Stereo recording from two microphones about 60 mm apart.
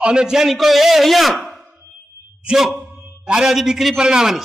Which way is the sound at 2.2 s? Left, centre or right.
Right.